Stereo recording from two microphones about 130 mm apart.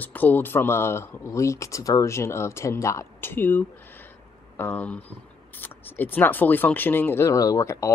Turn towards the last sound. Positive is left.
turn(degrees=25)  # may be behind; listen again after turning